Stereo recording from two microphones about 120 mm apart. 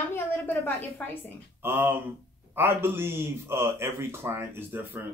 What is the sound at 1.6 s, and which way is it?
Speech, 15° right (ahead or behind).